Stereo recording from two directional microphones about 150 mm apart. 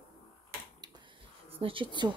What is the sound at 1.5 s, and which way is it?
Speech, 35° right (ahead or behind).